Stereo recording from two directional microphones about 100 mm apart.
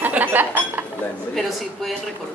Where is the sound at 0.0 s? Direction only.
20° right (ahead or behind).